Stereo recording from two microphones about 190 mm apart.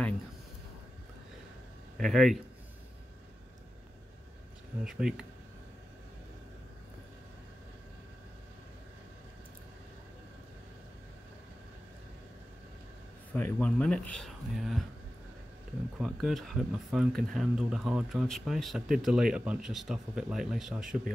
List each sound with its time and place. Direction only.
2.0 s speech: centre (ahead or behind)
4.8 s speech: centre (ahead or behind)
13.3 s speech: 10° left (ahead or behind)
16.0 s speech: centre (ahead or behind)